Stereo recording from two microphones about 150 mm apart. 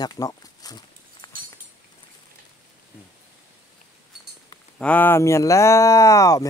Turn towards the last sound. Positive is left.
turn(degrees=20)  # may be behind; listen again after turning